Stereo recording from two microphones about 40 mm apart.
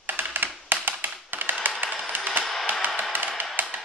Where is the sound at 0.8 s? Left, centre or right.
Right.